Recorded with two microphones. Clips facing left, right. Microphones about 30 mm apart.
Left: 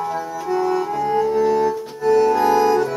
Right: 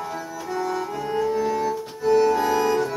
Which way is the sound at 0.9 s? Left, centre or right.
Centre.